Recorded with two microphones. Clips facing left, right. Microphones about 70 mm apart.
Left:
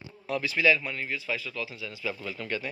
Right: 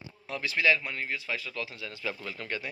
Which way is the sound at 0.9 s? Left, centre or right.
Right.